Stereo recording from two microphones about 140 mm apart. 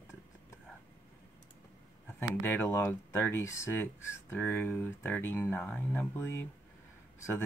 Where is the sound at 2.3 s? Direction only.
15° left (ahead or behind).